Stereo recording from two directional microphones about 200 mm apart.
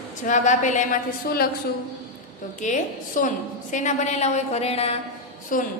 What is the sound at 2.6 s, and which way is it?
A woman's voice, 40° left (ahead or behind).